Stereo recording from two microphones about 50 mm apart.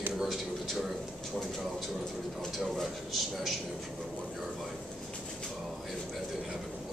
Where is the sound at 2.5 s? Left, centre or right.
Centre.